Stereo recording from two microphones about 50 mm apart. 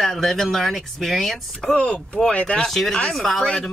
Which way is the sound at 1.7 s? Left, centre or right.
Left.